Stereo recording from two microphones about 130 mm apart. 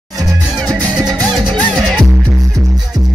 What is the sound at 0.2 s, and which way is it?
Music, 30° right (ahead or behind).